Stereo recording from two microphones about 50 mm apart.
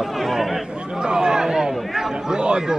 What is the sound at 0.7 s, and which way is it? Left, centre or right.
Chatter, centre.